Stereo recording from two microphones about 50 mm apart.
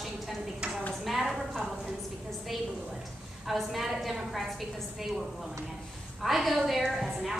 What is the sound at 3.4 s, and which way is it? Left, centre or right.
A woman's voice, centre.